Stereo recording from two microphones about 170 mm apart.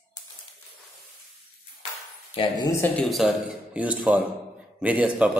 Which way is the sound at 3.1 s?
5° right (ahead or behind).